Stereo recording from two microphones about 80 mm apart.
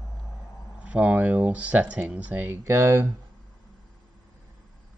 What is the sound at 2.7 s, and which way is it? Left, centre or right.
Speech, right.